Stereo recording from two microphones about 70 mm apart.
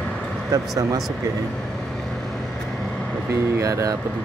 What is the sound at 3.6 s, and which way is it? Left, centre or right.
Speech, right.